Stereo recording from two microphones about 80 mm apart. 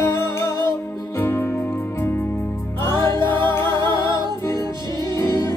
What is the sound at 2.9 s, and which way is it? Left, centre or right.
Music, right.